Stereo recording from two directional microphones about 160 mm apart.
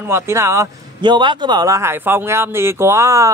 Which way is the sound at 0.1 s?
20° right (ahead or behind).